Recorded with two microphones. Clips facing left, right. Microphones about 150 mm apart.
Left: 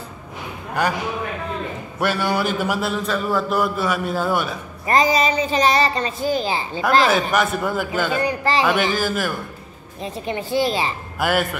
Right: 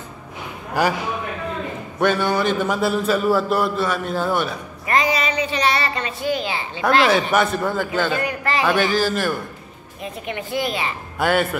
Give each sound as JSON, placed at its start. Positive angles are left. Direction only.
{"t": 2.0, "sound": "speech", "side_deg": 10}
{"t": 2.9, "sound": "a man's voice", "side_deg": -5}
{"t": 4.8, "sound": "a woman's voice", "side_deg": 35}
{"t": 6.8, "sound": "a man's voice", "side_deg": 0}
{"t": 8.2, "sound": "a woman's voice", "side_deg": 30}
{"t": 8.7, "sound": "speech", "side_deg": 10}
{"t": 10.0, "sound": "a woman's voice", "side_deg": 30}
{"t": 11.1, "sound": "a man's voice", "side_deg": 5}